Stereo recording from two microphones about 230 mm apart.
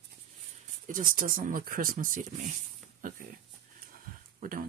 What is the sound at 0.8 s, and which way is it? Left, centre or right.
Speech, right.